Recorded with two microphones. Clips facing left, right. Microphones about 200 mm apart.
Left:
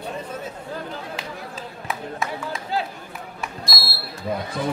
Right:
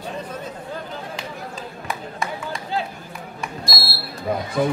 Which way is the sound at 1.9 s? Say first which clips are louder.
Left 1 dB; centre (ahead or behind).